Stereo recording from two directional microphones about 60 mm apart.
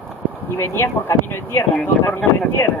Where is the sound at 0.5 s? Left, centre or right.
Left.